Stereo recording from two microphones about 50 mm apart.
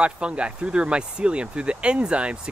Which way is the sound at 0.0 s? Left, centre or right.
Right.